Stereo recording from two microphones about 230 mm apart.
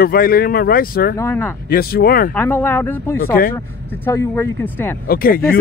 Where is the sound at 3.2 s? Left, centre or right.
Left.